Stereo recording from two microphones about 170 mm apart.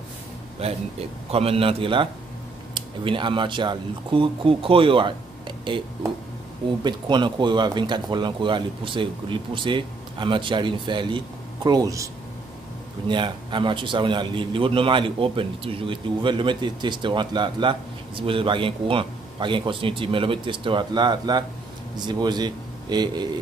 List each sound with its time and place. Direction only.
0.6 s a man's voice: 35° right (ahead or behind)
13.1 s a man's voice: 30° right (ahead or behind)